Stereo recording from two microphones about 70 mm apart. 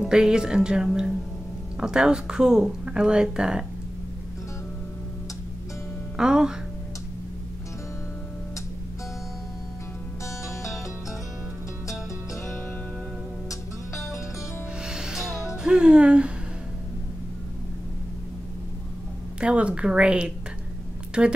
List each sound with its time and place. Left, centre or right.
0.0 s speech: centre
6.1 s speech: centre
10.2 s music: left
13.5 s music: left
14.9 s music: centre
15.6 s speech: centre
19.4 s speech: centre